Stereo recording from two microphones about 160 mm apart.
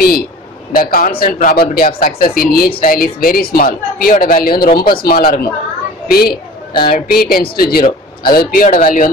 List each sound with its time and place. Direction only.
0.7 s speech: 65° left (ahead or behind)
6.0 s a sound: 70° left (ahead or behind)
7.1 s speech: 70° left (ahead or behind)
8.6 s speech: 50° left (ahead or behind)